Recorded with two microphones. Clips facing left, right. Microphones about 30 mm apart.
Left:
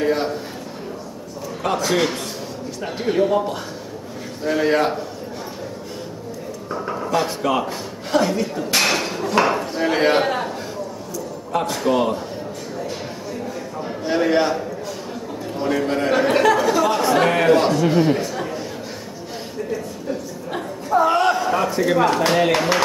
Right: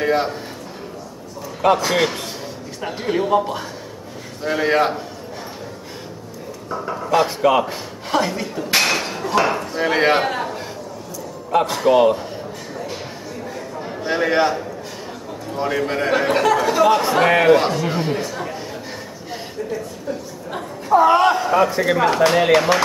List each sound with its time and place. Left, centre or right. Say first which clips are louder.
0.0 s a man's voice: right 1 dB; centre
1.6 s a man's voice: right 4 dB; centre
2.8 s a man's voice: left 2 dB; centre
6.7 s speech: even; centre
7.1 s a man's voice: right 5 dB; centre
8.8 s hammer: even; centre
9.8 s a man's voice: right 2 dB; centre
11.5 s a man's voice: right 4 dB; centre
13.7 s a sound: even; centre
15.5 s a man's voice: even; centre
16.6 s a man's voice: right 2 dB; centre
20.9 s speech: right 3 dB; centre